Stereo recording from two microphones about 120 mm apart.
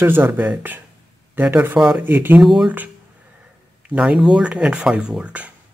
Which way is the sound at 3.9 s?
10° right (ahead or behind).